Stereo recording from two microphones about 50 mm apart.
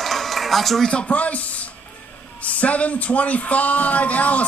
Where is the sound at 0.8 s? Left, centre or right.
Left.